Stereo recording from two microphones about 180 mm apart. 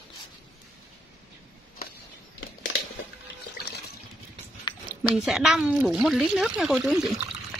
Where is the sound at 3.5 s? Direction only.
65° left (ahead or behind).